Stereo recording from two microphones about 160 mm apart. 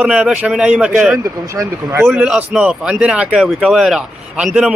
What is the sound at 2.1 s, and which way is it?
A man's voice, 5° right (ahead or behind).